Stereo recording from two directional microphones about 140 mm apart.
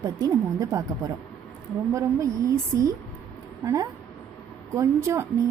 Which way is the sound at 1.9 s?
20° right (ahead or behind).